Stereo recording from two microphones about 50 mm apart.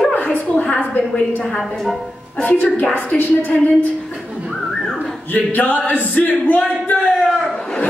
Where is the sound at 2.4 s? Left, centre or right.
Left.